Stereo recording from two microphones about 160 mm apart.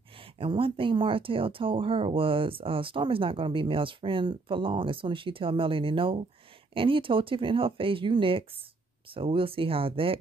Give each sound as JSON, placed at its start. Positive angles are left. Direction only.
{"t": 0.4, "sound": "speech", "side_deg": -35}